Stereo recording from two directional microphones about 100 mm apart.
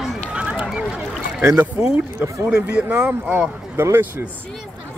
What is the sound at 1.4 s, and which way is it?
Speech, 25° right (ahead or behind).